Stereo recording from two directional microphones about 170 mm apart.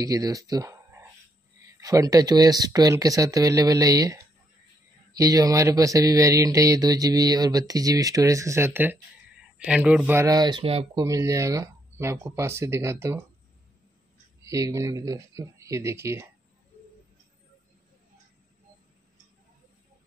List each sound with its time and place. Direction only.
0.0 s speech: 20° right (ahead or behind)
11.1 s speech: 20° right (ahead or behind)
14.4 s speech: 20° right (ahead or behind)